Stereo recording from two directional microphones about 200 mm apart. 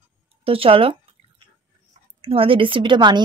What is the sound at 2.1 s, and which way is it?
Speech, 25° right (ahead or behind).